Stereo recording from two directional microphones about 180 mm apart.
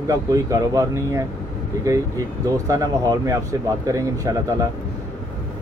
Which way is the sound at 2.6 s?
20° right (ahead or behind).